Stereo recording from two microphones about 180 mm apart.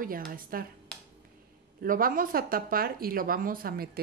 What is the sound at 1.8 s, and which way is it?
A woman's voice, 50° right (ahead or behind).